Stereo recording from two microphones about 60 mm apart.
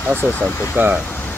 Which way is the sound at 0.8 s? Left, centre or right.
Right.